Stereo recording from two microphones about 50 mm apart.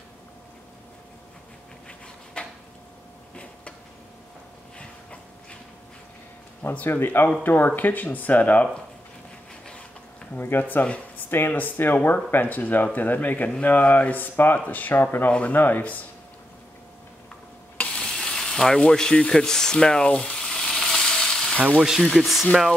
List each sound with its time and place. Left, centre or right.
2.4 s a sound: centre
4.7 s a sound: left
6.9 s speech: left
10.3 s speech: left
18.0 s frying: centre
21.7 s speech: centre
22.1 s speech: centre